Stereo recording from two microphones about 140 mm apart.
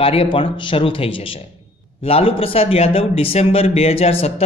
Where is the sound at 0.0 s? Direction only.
45° left (ahead or behind).